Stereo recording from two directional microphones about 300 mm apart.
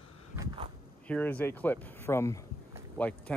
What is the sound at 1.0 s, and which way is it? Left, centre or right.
Speech, centre.